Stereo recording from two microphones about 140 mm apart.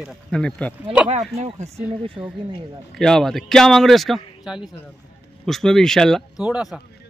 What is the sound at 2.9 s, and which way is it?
A man's voice, 5° left (ahead or behind).